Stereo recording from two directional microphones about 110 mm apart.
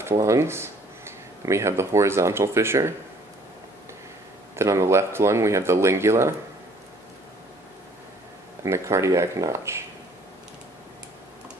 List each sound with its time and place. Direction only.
0.0 s speech: 30° right (ahead or behind)
4.6 s speech: 25° right (ahead or behind)
8.6 s speech: 25° right (ahead or behind)